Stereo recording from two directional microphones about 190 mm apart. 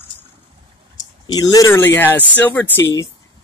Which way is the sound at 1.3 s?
20° left (ahead or behind).